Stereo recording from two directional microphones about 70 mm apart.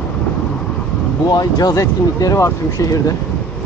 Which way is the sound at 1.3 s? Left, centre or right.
Left.